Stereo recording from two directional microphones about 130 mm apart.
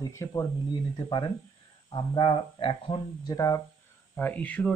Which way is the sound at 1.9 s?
40° left (ahead or behind).